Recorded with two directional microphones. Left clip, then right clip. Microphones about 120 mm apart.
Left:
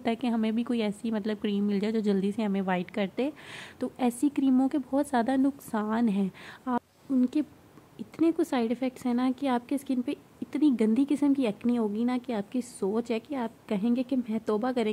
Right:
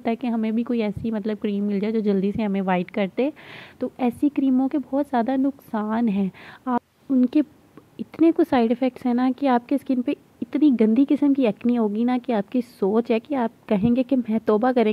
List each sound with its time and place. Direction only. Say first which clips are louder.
0.0 s speech: right 4 dB; 15° right (ahead or behind)
7.1 s a woman's voice: right 7 dB; 40° right (ahead or behind)